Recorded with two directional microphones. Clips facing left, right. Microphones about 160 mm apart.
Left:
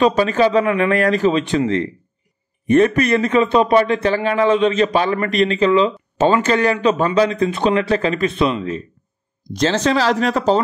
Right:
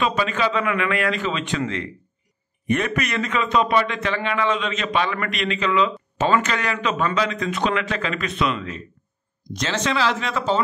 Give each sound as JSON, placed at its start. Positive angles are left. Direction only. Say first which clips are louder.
{"t": 0.0, "sound": "a man's voice", "louder": "left 8 dB", "side_deg": 35}
{"t": 2.7, "sound": "a man's voice", "louder": "left 9 dB", "side_deg": 35}